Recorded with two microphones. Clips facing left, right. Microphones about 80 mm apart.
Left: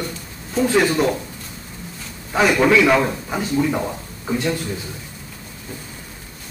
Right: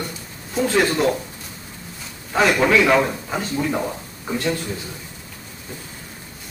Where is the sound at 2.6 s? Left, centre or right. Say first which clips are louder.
Left 2 dB; centre.